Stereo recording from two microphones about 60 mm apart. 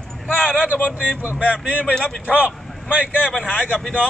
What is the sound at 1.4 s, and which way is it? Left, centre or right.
Speech, right.